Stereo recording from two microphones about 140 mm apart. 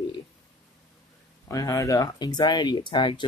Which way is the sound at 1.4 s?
25° left (ahead or behind).